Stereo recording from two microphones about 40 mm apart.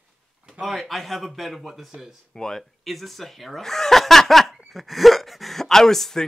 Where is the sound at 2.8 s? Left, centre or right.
Centre.